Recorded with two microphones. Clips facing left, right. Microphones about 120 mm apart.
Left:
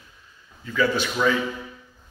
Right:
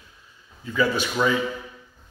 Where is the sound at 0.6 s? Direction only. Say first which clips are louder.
Even; 20° right (ahead or behind).